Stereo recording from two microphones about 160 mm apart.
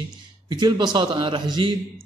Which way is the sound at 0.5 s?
25° right (ahead or behind).